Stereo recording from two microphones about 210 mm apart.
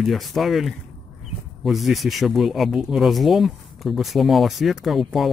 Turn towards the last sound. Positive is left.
turn(degrees=0)  # may be behind; listen again after turning